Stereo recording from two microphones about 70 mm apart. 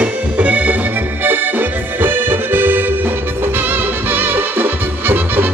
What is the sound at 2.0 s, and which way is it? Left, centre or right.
Accordion, right.